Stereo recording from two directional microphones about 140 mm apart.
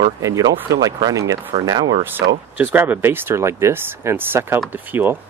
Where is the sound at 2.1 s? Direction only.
15° right (ahead or behind).